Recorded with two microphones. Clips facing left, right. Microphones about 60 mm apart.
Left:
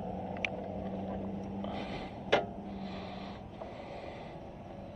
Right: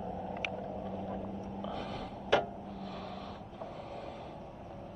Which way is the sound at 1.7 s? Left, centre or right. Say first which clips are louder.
Even; left.